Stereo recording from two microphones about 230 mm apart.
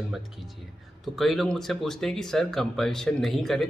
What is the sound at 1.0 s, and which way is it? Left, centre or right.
Speech, centre.